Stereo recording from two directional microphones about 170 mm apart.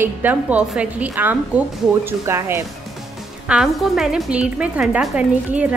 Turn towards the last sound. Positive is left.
turn(degrees=-5)  # may be behind; listen again after turning